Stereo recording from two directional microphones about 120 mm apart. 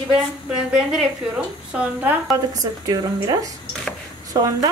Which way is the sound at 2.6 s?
35° right (ahead or behind).